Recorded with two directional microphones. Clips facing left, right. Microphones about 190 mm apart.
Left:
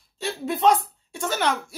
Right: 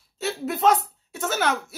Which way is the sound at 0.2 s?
Centre (ahead or behind).